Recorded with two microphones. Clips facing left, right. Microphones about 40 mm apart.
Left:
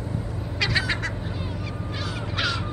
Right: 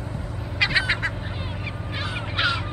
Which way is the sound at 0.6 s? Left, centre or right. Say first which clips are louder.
Right 3 dB; right.